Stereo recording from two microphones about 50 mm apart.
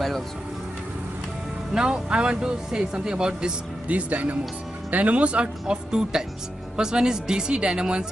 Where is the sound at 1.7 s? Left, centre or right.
Centre.